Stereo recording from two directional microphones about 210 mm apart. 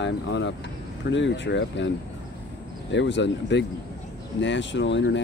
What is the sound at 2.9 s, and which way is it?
Speech, 60° left (ahead or behind).